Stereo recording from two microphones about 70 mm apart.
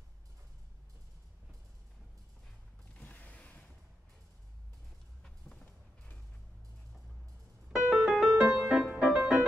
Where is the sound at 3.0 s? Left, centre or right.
Left.